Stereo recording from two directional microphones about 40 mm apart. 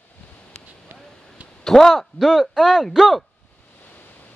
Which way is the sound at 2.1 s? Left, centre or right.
Centre.